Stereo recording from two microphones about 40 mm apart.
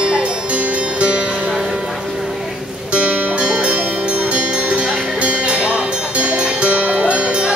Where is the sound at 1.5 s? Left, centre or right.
Centre.